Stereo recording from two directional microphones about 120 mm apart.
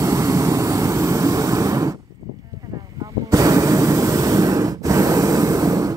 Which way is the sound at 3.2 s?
30° right (ahead or behind).